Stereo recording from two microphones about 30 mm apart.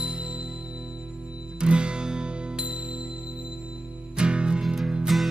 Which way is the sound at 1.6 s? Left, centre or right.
Right.